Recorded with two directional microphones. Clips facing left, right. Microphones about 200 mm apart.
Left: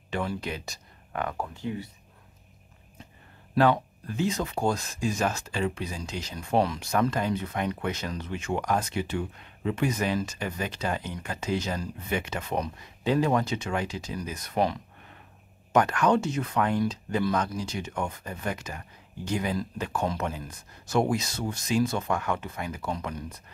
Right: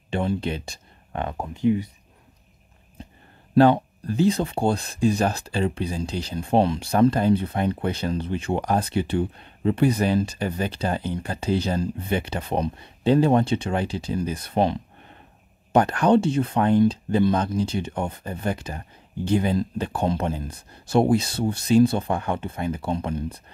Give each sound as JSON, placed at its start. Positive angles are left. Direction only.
{"t": 0.1, "sound": "speech", "side_deg": -25}
{"t": 3.5, "sound": "speech", "side_deg": -30}